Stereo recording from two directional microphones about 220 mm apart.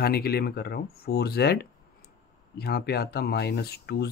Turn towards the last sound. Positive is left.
turn(degrees=45)  # may be behind; listen again after turning